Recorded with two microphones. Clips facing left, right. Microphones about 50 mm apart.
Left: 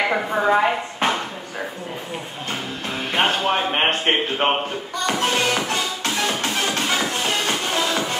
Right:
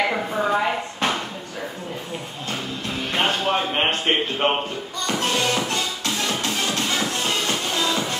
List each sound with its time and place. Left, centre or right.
0.1 s dishes: left
3.2 s music: left
4.4 s speech: left
5.0 s music: left